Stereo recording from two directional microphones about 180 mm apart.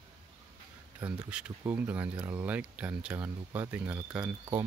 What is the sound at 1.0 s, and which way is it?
Speech, 10° right (ahead or behind).